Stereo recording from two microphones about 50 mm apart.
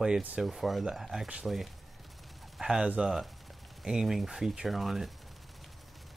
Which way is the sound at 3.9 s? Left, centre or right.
Centre.